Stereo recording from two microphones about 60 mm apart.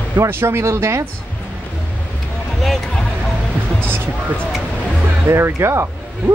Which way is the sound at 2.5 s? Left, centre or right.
Centre.